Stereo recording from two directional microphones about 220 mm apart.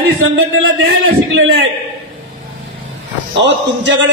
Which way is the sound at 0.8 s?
70° right (ahead or behind).